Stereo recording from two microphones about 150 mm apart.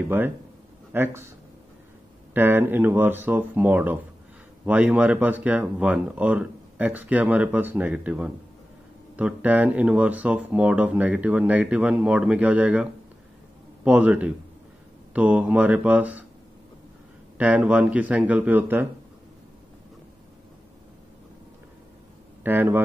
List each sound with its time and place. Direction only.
0.9 s speech: 15° right (ahead or behind)
2.3 s speech: 15° right (ahead or behind)
13.8 s speech: 10° right (ahead or behind)
17.4 s speech: 10° right (ahead or behind)
22.4 s speech: 15° right (ahead or behind)